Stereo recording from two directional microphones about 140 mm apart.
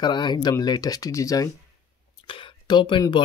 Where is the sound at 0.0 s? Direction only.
30° left (ahead or behind).